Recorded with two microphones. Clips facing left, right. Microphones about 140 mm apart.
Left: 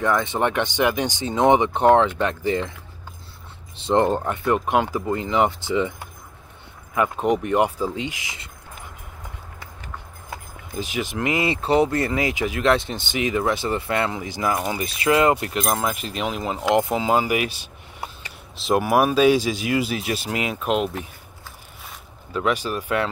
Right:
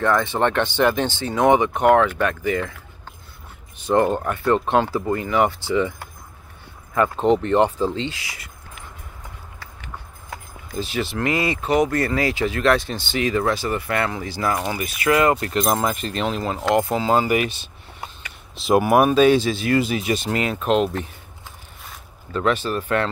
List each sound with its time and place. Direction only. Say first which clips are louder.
0.0 s speech: right 2 dB; 15° left (ahead or behind)
3.7 s speech: right 1 dB; 25° left (ahead or behind)
4.5 s speech: right 2 dB; 10° left (ahead or behind)
10.7 s speech: right 2 dB; 15° left (ahead or behind)
15.8 s speech: right 2 dB; 5° left (ahead or behind)
21.8 s boat: even; 10° left (ahead or behind)